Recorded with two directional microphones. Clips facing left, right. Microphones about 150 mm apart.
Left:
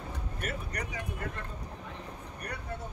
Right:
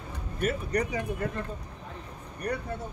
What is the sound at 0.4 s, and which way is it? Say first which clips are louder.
Speech: right 11 dB; 25° right (ahead or behind).